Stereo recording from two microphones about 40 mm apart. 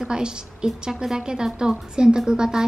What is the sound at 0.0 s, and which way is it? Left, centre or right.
A woman's voice, right.